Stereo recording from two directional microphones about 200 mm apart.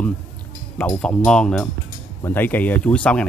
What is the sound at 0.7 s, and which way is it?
Speech, 5° left (ahead or behind).